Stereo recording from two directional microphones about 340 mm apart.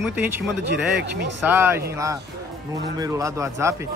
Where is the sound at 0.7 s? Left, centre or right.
Right.